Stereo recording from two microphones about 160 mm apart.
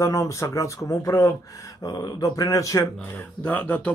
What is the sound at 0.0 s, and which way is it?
Speech, 20° left (ahead or behind).